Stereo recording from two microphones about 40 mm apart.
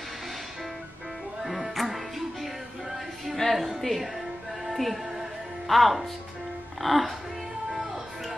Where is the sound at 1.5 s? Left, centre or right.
Centre.